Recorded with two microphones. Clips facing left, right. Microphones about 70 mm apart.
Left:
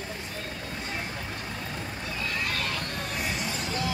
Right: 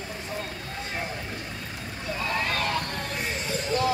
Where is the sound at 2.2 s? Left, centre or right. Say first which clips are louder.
Right 4 dB; right.